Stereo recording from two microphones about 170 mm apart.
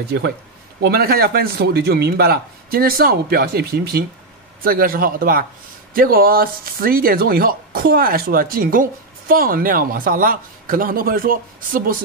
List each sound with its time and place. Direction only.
0.8 s a man's voice: 65° right (ahead or behind)